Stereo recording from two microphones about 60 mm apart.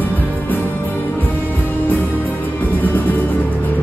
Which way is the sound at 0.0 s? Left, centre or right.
Left.